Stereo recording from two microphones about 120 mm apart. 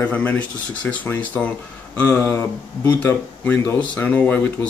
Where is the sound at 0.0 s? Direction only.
15° left (ahead or behind).